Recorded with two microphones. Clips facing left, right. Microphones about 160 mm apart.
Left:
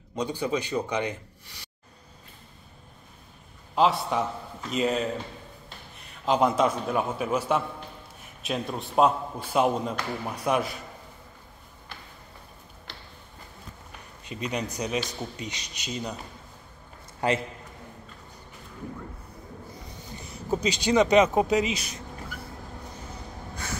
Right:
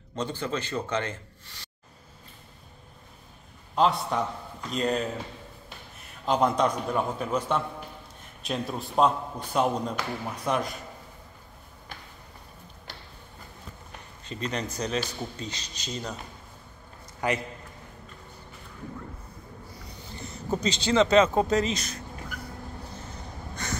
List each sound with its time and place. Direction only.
0.1 s a man's voice: 15° left (ahead or behind)
3.7 s a man's voice: centre (ahead or behind)
6.2 s a man's voice: 5° left (ahead or behind)
14.2 s a man's voice: 10° left (ahead or behind)
17.2 s a man's voice: 30° left (ahead or behind)
20.2 s a man's voice: 10° left (ahead or behind)
23.5 s gasp: 5° left (ahead or behind)